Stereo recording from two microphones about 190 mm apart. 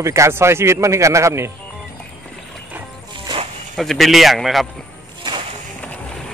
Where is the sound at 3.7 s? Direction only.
Centre (ahead or behind).